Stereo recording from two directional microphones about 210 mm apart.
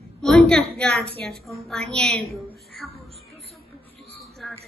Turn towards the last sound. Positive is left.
turn(degrees=0)  # may be behind; listen again after turning